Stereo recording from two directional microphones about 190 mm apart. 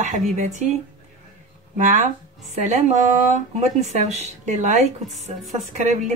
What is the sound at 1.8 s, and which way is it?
Speech, 40° right (ahead or behind).